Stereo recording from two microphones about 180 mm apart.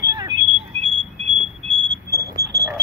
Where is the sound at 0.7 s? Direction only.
35° right (ahead or behind).